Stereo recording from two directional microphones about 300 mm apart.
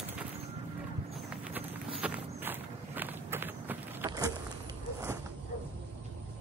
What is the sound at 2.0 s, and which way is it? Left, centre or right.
Walk, centre.